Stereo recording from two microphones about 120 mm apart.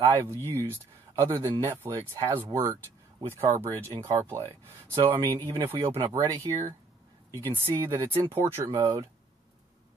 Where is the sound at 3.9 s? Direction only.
20° right (ahead or behind).